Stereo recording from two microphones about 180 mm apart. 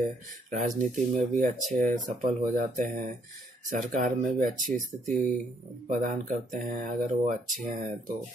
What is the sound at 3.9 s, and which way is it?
Speech, 45° right (ahead or behind).